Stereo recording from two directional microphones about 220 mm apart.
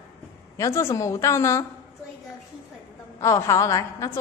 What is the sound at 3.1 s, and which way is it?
Speech, 15° left (ahead or behind).